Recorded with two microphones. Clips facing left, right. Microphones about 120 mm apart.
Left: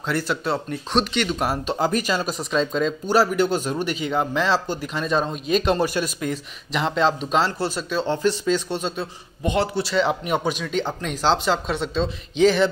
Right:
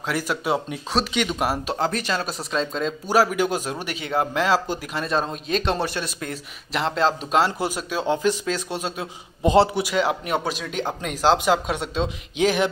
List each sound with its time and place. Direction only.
0.0 s speech: 5° right (ahead or behind)
1.8 s speech: 5° left (ahead or behind)
9.4 s a man's voice: 30° right (ahead or behind)
9.8 s speech: 10° right (ahead or behind)
10.2 s speech: centre (ahead or behind)